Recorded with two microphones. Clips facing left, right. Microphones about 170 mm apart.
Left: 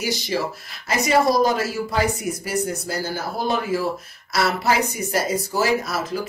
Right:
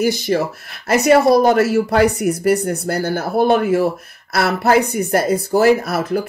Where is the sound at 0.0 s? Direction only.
55° right (ahead or behind).